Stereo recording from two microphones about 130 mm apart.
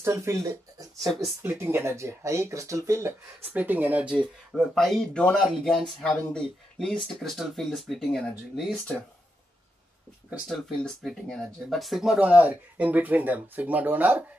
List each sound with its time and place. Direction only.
0.0 s speech: 20° right (ahead or behind); by 8.7 s centre (ahead or behind)
10.5 s speech: 5° left (ahead or behind); by 14.2 s 15° right (ahead or behind)